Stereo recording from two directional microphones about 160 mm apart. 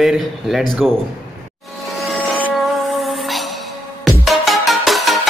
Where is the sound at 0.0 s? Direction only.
Centre (ahead or behind).